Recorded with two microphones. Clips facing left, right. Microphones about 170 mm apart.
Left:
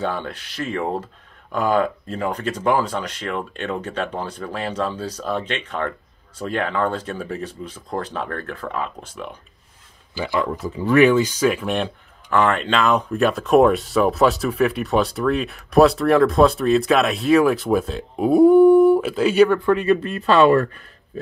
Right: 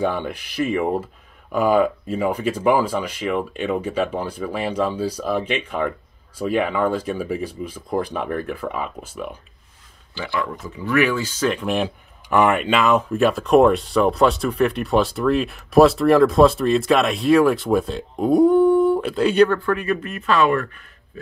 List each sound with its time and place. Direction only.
0.0 s speech: 15° right (ahead or behind)
10.6 s speech: 30° left (ahead or behind); by 11.9 s centre (ahead or behind)
12.3 s speech: 15° right (ahead or behind); by 19.6 s 5° left (ahead or behind)
19.6 s speech: 20° left (ahead or behind)